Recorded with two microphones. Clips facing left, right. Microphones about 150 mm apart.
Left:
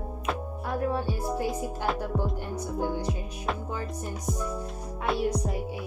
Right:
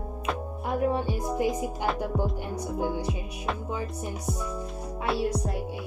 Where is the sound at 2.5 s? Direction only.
10° right (ahead or behind).